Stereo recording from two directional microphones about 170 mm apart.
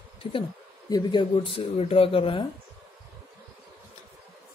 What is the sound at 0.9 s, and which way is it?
Speech, 25° left (ahead or behind).